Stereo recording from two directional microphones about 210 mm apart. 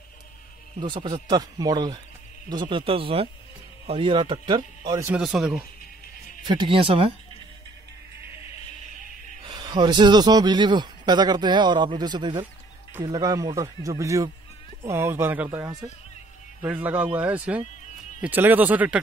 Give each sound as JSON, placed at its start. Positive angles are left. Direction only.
{"t": 0.7, "sound": "a man's voice", "side_deg": -25}
{"t": 5.1, "sound": "speech", "side_deg": 0}
{"t": 6.4, "sound": "a man's voice", "side_deg": -20}
{"t": 9.5, "sound": "a man's voice", "side_deg": -20}